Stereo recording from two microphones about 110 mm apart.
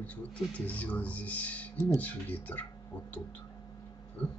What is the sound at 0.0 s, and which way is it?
Speech, 10° left (ahead or behind).